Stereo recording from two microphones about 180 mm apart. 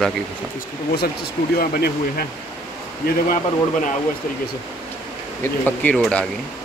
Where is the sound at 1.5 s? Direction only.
55° left (ahead or behind).